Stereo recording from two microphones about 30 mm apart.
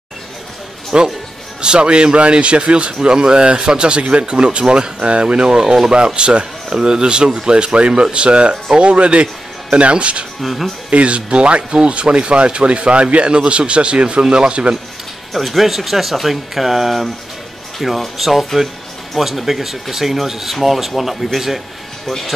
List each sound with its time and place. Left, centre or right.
0.9 s speech: right
5.6 s speech: right
10.4 s speech: centre
10.9 s speech: right
15.3 s speech: centre